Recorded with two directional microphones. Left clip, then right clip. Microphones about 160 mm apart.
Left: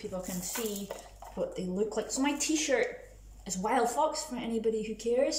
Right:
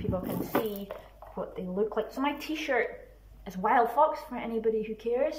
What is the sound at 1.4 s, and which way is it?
Speech, 20° left (ahead or behind).